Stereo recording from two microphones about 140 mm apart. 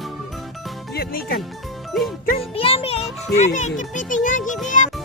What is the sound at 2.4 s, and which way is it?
Music, 45° left (ahead or behind).